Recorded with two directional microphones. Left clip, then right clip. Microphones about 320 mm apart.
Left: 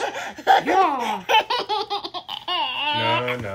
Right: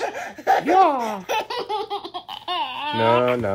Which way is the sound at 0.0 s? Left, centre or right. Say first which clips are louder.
Left 1 dB; centre.